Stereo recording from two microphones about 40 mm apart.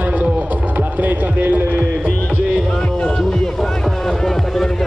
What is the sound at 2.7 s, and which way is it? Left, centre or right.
Music, left.